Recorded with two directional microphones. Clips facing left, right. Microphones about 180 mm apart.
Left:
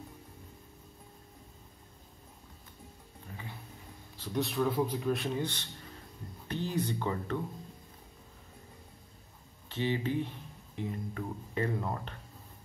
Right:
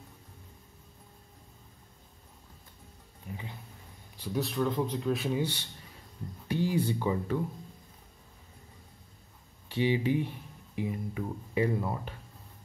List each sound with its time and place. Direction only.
3.3 s music: 15° right (ahead or behind)
4.2 s speech: centre (ahead or behind)
9.7 s speech: 15° right (ahead or behind)